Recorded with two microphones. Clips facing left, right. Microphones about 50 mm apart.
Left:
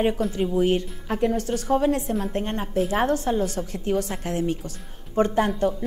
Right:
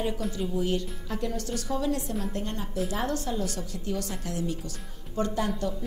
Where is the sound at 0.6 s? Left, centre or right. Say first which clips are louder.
Left 8 dB; left.